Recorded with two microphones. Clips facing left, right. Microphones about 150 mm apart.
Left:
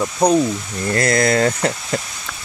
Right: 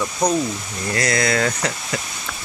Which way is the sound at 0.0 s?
30° left (ahead or behind).